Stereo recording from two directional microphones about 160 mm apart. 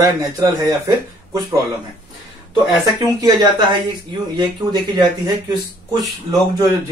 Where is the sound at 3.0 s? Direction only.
25° right (ahead or behind).